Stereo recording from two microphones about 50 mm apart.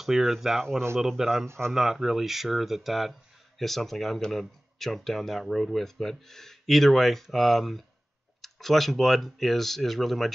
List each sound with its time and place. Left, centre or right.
0.0 s speech: centre